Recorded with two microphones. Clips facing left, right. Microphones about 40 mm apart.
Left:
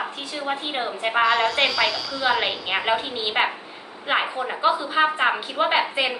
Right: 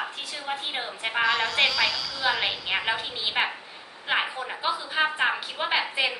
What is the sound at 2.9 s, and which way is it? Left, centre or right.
A woman's voice, left.